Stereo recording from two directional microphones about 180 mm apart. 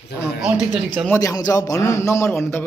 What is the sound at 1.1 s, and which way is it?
A man's voice, 20° left (ahead or behind).